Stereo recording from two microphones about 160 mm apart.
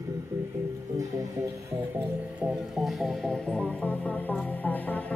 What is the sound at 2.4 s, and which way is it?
Speech, centre (ahead or behind).